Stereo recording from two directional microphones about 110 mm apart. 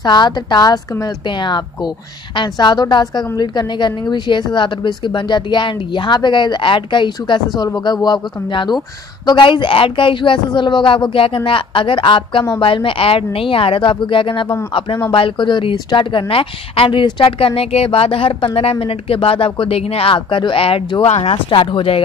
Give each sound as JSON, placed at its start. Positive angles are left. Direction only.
{"t": 0.0, "sound": "a woman's voice", "side_deg": 45}
{"t": 21.1, "sound": "speech", "side_deg": 70}
{"t": 21.5, "sound": "a woman's voice", "side_deg": 50}